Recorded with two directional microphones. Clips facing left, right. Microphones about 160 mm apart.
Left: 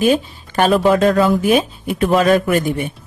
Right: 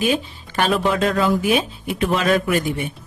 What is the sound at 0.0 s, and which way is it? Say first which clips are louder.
Speech: left 6 dB; 45° left (ahead or behind).